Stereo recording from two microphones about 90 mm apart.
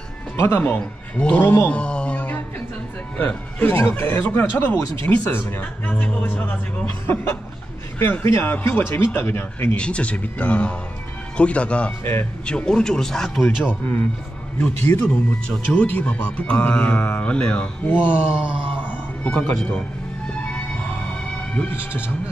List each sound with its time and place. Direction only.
0.4 s speech: 25° left (ahead or behind)
0.7 s speech: 15° left (ahead or behind)
1.4 s speech: 25° left (ahead or behind)
1.7 s a sound: 10° left (ahead or behind)
3.2 s speech: 25° left (ahead or behind)
8.0 s speech: 25° left (ahead or behind)
9.8 s speech: 10° left (ahead or behind)
12.0 s speech: 25° left (ahead or behind)
12.4 s speech: 10° left (ahead or behind)
14.6 s speech: 20° left (ahead or behind)
18.2 s a sound: 10° right (ahead or behind)
18.9 s music: 20° left (ahead or behind)
21.5 s speech: 25° left (ahead or behind)